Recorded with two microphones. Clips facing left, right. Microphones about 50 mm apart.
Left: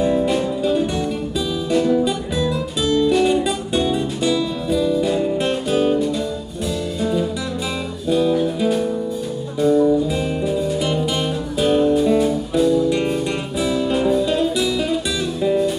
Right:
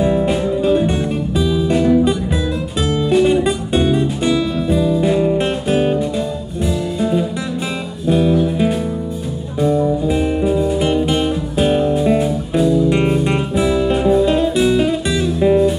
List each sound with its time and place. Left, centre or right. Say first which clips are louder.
0.0 s music: right 2 dB; right
8.1 s music: right 3 dB; right